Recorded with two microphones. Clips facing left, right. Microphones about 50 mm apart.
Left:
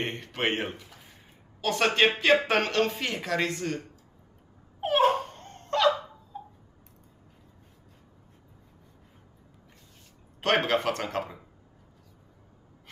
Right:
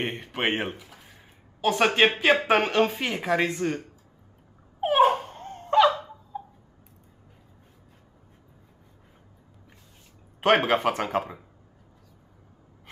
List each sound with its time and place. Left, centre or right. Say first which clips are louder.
0.0 s speech: right 2 dB; centre
1.6 s speech: right 3 dB; centre
4.7 s dog: right 3 dB; centre
10.4 s speech: right 4 dB; centre